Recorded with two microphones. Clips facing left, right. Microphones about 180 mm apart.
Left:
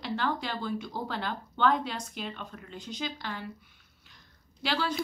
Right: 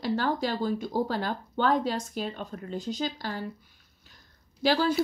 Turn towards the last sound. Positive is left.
turn(degrees=-40)  # may be behind; listen again after turning